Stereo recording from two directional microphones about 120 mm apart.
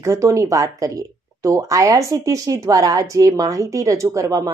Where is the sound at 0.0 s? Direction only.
25° right (ahead or behind).